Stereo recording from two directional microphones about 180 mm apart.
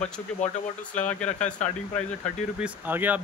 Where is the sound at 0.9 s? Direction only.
45° left (ahead or behind).